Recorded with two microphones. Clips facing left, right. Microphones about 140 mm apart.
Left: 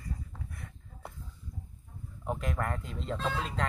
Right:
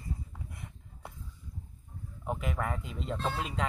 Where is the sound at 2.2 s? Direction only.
5° right (ahead or behind).